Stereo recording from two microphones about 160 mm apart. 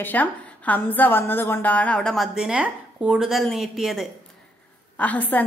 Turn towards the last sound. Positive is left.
turn(degrees=10)  # may be behind; listen again after turning